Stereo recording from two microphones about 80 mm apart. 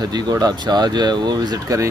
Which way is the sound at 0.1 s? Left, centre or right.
Right.